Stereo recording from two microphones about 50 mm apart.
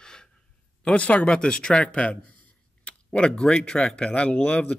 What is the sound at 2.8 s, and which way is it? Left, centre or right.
Tick-tock, left.